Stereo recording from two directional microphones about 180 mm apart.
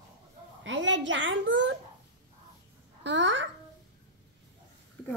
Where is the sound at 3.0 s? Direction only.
90° right.